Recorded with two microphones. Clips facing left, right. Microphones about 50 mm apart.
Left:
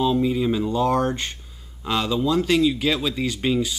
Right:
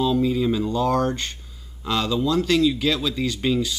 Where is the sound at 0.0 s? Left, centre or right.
Centre.